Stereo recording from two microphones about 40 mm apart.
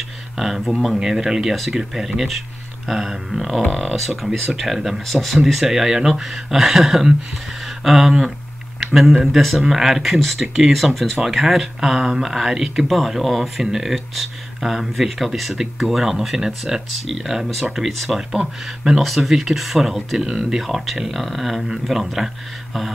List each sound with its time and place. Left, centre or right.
0.4 s speech: centre
17.1 s speech: centre
20.2 s speech: centre
20.6 s speech: centre